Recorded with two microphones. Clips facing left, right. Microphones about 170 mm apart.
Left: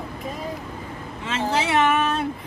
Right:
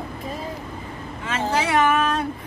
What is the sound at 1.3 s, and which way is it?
Speech, 25° left (ahead or behind).